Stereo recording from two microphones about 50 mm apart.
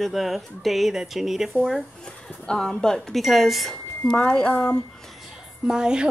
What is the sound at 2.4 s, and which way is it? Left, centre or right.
Speech, centre.